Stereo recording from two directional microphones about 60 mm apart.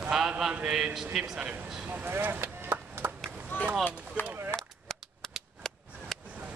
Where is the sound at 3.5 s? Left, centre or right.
Left.